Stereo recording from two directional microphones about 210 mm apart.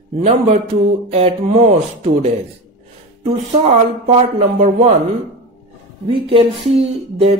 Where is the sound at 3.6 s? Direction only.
30° right (ahead or behind).